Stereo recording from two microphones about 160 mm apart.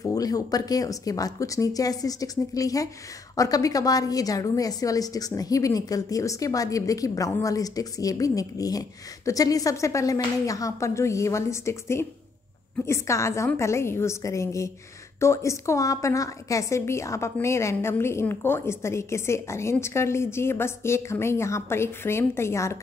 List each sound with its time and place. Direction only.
0.0 s a woman's voice: 25° left (ahead or behind)